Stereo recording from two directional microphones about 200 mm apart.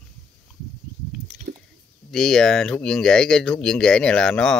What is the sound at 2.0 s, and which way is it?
Speech, centre (ahead or behind).